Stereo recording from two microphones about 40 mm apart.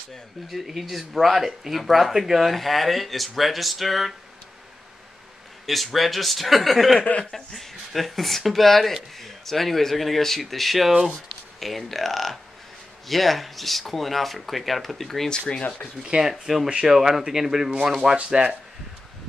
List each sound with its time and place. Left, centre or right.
0.5 s speech: centre
5.7 s speech: centre
15.2 s speech: left
16.0 s speech: centre
18.1 s speech: right